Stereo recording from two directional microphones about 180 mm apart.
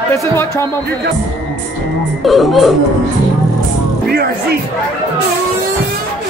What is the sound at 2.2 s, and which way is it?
Speech, centre (ahead or behind).